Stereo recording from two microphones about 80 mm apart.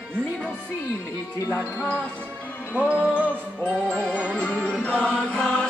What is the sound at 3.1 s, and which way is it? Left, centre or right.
Music, centre.